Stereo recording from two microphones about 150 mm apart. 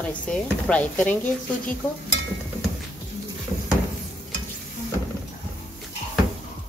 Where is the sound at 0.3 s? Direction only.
5° left (ahead or behind).